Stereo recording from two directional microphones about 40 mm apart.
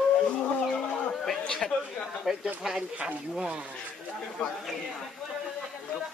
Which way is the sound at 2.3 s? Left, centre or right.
Centre.